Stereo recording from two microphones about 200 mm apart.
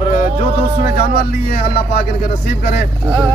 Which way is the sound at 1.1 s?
50° left (ahead or behind).